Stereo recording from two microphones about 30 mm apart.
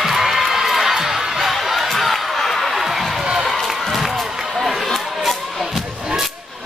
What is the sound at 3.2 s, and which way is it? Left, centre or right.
Crowd, centre.